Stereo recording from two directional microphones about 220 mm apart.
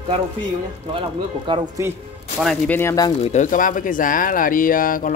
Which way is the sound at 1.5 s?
20° right (ahead or behind).